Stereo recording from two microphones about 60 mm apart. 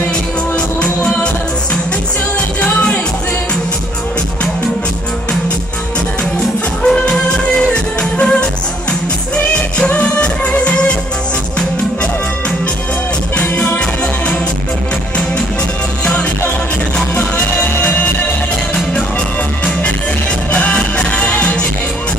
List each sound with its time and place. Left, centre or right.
0.7 s music: centre
2.6 s music: left
6.8 s music: centre
9.8 s music: left
13.4 s music: left
16.0 s music: left
17.4 s music: left
20.5 s music: left